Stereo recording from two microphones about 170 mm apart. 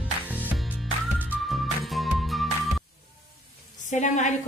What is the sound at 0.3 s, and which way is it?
Music, 10° right (ahead or behind).